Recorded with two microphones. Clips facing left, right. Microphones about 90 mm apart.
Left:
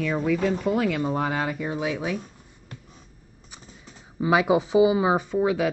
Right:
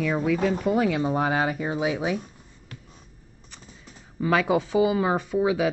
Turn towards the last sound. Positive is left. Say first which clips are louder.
# even
turn(degrees=-5)  # may be behind; listen again after turning